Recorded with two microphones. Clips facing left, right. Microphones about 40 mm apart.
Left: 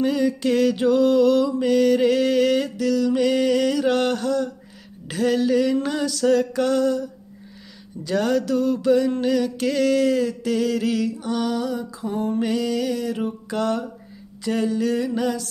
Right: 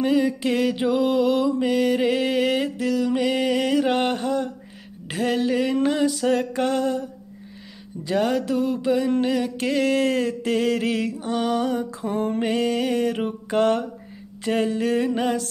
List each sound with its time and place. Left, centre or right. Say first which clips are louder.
0.0 s mantra: even; centre
8.0 s mantra: left 1 dB; right